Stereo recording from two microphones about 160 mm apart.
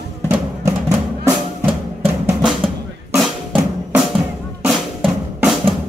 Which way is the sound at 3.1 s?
Centre (ahead or behind).